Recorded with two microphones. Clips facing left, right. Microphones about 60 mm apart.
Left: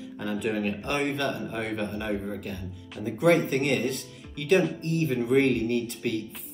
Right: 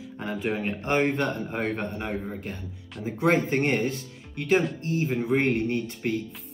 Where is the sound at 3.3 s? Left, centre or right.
Right.